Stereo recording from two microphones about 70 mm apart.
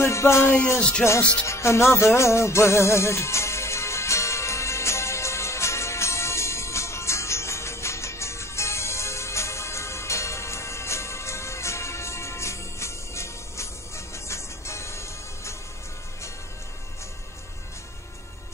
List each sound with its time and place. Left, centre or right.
0.0 s music: left
0.7 s music: centre
1.4 s music: left